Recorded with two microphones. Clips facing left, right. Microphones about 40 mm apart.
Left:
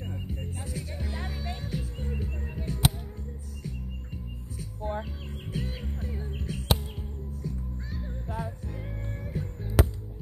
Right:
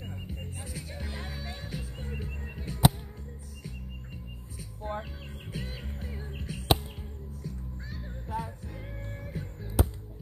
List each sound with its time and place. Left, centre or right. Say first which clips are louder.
0.0 s music: left 4 dB; centre
4.6 s music: left 3 dB; centre
9.8 s music: left 4 dB; left